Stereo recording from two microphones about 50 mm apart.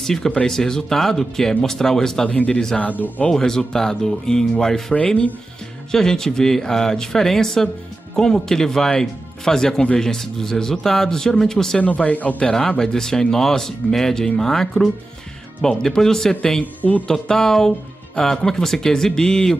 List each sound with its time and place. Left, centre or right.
0.0 s speech: centre
2.2 s speech: left
3.3 s speech: centre
4.9 s speech: left
5.9 s speech: centre
11.8 s speech: left
12.4 s speech: centre